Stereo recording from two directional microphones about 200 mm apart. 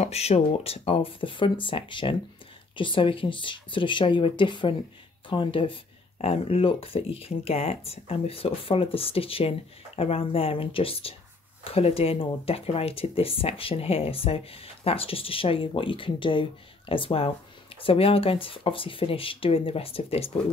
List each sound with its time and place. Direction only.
0.0 s speech: 30° left (ahead or behind)